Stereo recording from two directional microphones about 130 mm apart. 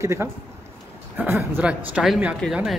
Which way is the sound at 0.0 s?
20° right (ahead or behind).